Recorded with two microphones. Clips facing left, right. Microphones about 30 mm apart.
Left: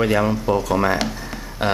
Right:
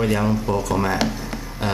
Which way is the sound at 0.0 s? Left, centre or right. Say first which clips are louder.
Left 2 dB; centre.